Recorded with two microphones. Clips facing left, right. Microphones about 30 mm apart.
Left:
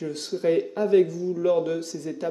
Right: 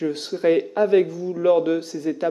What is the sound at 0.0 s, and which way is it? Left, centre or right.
Speech, right.